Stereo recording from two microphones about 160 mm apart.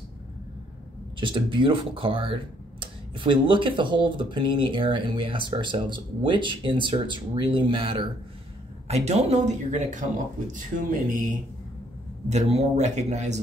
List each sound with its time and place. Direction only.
1.2 s speech: 30° right (ahead or behind); by 11.2 s 55° right (ahead or behind)
12.3 s speech: 40° right (ahead or behind)